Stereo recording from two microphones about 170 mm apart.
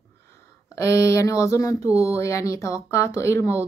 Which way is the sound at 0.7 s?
15° left (ahead or behind).